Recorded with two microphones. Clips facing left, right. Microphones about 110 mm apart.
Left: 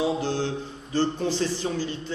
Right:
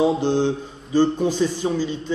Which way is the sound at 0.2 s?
20° right (ahead or behind).